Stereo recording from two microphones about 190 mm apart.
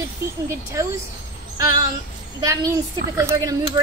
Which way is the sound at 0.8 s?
15° right (ahead or behind).